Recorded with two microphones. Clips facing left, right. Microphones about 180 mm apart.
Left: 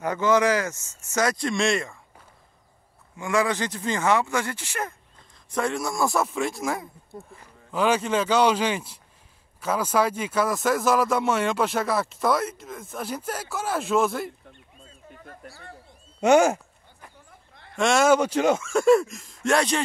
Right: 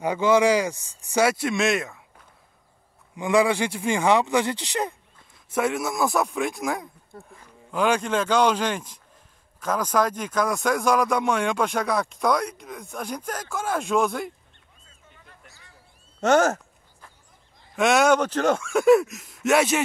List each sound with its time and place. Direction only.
0.0 s speech: 10° right (ahead or behind)
3.2 s speech: 15° right (ahead or behind)
5.5 s speech: 5° right (ahead or behind)
14.9 s a sound: 40° left (ahead or behind)
16.2 s a sound: 10° left (ahead or behind)
17.7 s speech: centre (ahead or behind)